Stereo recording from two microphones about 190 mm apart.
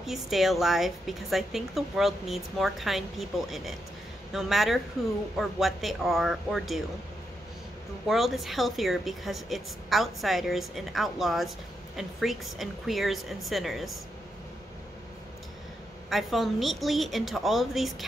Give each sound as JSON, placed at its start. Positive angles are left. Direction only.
{"t": 0.0, "sound": "a woman's voice", "side_deg": 0}
{"t": 8.1, "sound": "a woman's voice", "side_deg": 0}
{"t": 16.1, "sound": "a woman's voice", "side_deg": 0}